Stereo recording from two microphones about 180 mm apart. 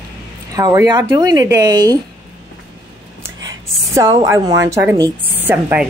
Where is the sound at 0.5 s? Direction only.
20° right (ahead or behind).